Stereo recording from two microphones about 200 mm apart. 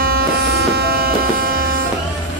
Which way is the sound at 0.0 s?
50° right (ahead or behind).